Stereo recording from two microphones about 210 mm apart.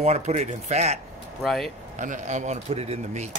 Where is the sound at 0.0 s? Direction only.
30° right (ahead or behind).